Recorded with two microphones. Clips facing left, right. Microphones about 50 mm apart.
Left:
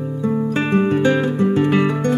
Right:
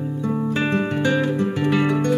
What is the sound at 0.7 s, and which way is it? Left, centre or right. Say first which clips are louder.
Guitar: left 7 dB; centre.